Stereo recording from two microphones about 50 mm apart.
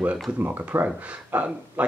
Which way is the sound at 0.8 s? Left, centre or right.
Right.